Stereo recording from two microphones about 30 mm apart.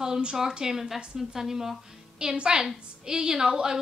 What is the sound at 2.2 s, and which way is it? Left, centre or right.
A woman's voice, right.